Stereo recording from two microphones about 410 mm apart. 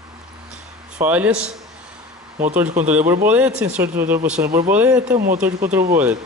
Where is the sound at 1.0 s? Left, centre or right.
Centre.